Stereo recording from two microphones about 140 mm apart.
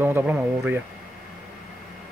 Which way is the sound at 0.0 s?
15° right (ahead or behind).